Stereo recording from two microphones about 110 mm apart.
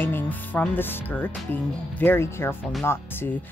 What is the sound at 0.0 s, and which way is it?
Speech, 15° left (ahead or behind).